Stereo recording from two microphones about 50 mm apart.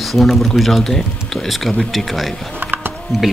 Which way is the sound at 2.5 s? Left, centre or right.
Right.